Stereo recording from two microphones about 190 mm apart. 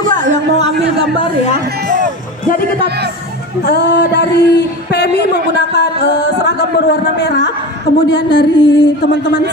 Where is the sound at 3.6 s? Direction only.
60° left (ahead or behind).